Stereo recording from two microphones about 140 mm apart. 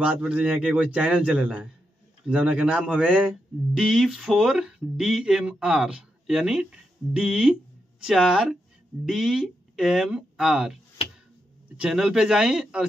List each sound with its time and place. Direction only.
0.0 s a man's voice: 5° right (ahead or behind)